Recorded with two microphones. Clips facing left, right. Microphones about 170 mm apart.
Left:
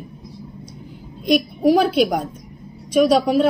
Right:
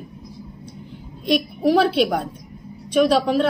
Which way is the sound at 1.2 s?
10° left (ahead or behind).